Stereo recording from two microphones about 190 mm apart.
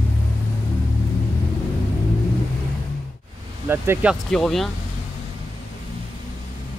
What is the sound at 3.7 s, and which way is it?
Speech, 10° right (ahead or behind).